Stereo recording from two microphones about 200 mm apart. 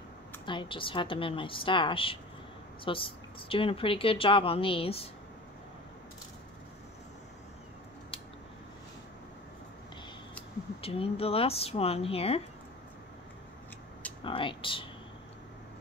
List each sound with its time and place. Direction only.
0.5 s speech: 25° left (ahead or behind)
10.8 s speech: 30° left (ahead or behind)
14.2 s speech: 25° left (ahead or behind)